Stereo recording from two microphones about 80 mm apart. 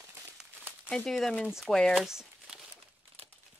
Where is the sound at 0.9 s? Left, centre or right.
Centre.